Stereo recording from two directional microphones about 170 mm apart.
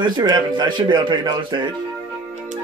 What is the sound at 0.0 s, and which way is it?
A man's voice, 25° right (ahead or behind).